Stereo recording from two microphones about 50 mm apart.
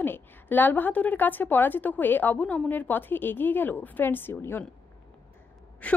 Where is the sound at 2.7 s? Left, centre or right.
Left.